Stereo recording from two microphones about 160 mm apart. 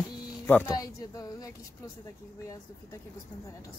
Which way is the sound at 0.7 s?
25° left (ahead or behind).